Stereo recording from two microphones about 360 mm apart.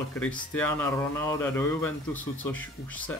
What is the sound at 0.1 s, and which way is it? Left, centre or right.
Speech, centre.